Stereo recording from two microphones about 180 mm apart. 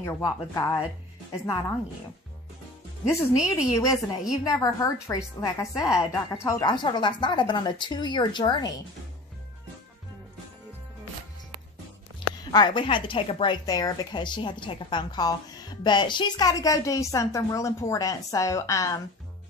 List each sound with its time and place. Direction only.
0.0 s speech: 20° left (ahead or behind)
3.3 s a woman's voice: 5° right (ahead or behind)
3.7 s speech: 20° left (ahead or behind)
12.4 s speech: 25° left (ahead or behind)